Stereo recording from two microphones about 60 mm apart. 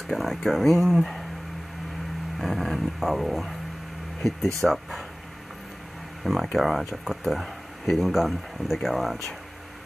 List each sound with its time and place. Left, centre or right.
0.0 s speech: centre
2.3 s a sound: centre
4.6 s speech: centre
6.2 s speech: centre